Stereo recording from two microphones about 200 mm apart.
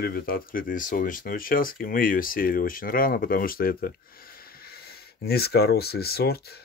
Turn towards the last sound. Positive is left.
turn(degrees=50)  # may be behind; listen again after turning